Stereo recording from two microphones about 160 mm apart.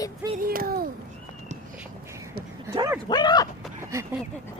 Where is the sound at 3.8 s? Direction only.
20° right (ahead or behind).